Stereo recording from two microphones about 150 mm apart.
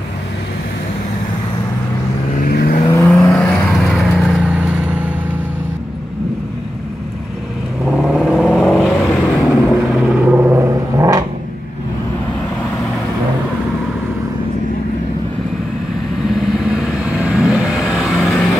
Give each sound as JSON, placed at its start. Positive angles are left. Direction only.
{"t": 2.4, "sound": "vehicle", "side_deg": 75}
{"t": 3.3, "sound": "vehicle", "side_deg": 0}
{"t": 7.8, "sound": "vehicle", "side_deg": -5}
{"t": 16.3, "sound": "vehicle", "side_deg": -5}